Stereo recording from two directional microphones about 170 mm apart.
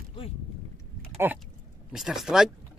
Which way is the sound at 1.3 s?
10° right (ahead or behind).